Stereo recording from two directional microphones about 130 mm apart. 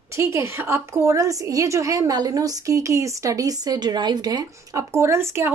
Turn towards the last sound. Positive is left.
turn(degrees=-20)  # may be behind; listen again after turning